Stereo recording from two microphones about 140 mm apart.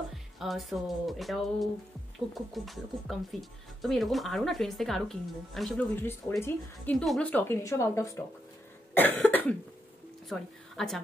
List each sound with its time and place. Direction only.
0.1 s speech: centre (ahead or behind); by 8.2 s 20° left (ahead or behind)
8.9 s cough: 15° left (ahead or behind)
10.3 s a woman's voice: centre (ahead or behind)